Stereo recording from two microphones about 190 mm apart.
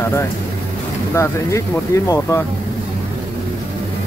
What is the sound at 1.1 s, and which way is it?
Speech, 15° left (ahead or behind).